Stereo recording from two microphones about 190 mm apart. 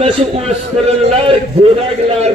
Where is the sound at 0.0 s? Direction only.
35° right (ahead or behind).